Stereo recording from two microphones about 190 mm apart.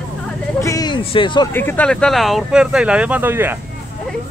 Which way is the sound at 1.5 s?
10° left (ahead or behind).